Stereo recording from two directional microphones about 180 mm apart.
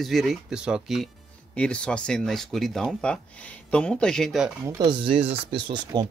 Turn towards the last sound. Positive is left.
turn(degrees=-25)  # may be behind; listen again after turning